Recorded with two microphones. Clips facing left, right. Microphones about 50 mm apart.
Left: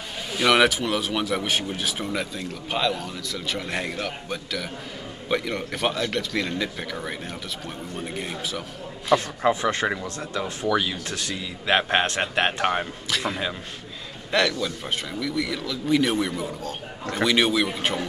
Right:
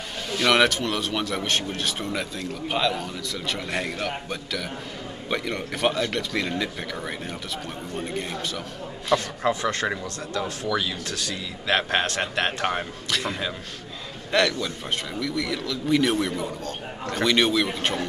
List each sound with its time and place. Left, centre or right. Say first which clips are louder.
0.3 s speech: left 1 dB; centre
9.1 s a man's voice: left 2 dB; centre
13.1 s speech: left 1 dB; centre
14.6 s speech: left 1 dB; centre